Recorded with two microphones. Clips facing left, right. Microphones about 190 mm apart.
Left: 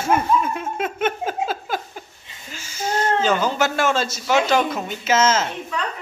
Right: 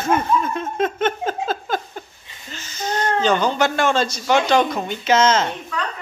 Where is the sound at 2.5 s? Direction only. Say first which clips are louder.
Left 1 dB; 10° left (ahead or behind).